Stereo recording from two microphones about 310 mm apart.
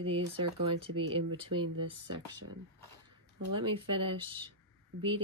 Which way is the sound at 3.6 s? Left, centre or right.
Centre.